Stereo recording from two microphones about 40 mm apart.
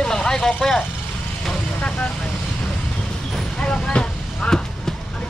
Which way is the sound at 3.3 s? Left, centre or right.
Centre.